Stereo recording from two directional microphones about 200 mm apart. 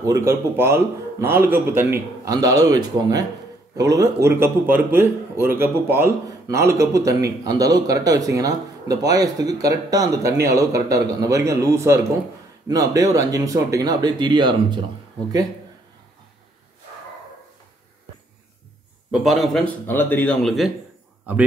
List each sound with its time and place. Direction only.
0.0 s speech: 15° right (ahead or behind)
19.2 s speech: centre (ahead or behind)